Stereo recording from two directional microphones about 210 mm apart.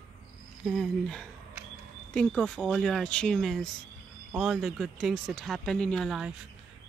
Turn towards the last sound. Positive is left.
turn(degrees=0)  # may be behind; listen again after turning